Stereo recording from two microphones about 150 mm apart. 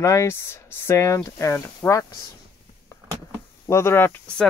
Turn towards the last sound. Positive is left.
turn(degrees=10)  # may be behind; listen again after turning